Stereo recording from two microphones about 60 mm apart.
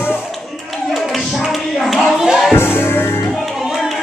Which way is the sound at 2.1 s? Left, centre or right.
Centre.